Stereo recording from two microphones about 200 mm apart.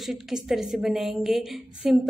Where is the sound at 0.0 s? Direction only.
Centre (ahead or behind).